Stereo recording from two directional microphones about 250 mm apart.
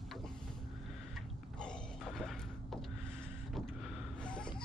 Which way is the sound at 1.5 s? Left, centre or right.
Centre.